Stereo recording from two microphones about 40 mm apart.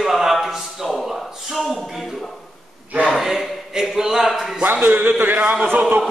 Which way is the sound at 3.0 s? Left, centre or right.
Centre.